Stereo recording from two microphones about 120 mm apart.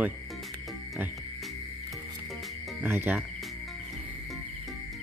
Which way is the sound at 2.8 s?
15° right (ahead or behind).